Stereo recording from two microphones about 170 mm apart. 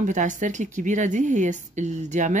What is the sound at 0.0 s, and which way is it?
Speech, 50° right (ahead or behind).